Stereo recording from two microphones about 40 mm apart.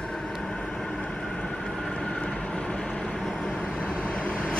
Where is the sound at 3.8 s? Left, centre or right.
Left.